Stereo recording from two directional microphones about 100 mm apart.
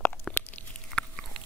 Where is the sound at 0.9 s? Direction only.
5° left (ahead or behind).